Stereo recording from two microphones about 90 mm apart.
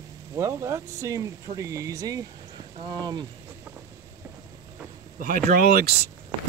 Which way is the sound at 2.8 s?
55° right (ahead or behind).